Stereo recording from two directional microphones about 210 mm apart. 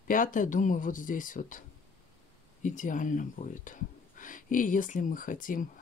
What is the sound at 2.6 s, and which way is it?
Speech, 35° left (ahead or behind).